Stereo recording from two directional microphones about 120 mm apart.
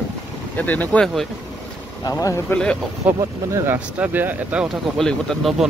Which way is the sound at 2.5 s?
5° left (ahead or behind).